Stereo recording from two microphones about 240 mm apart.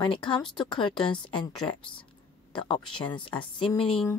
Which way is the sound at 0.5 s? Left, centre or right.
Centre.